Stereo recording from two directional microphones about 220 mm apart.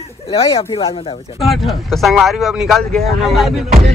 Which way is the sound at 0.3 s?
25° left (ahead or behind).